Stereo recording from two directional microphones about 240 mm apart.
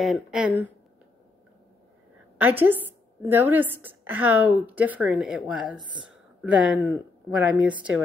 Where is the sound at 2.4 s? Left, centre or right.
Centre.